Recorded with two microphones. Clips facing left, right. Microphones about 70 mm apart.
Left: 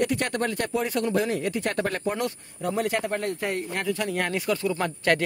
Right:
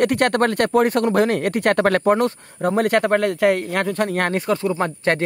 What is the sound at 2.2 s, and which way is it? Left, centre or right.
Speech, right.